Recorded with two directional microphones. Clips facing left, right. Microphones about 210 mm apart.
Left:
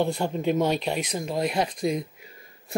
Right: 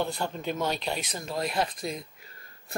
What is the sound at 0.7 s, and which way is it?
Speech, centre (ahead or behind).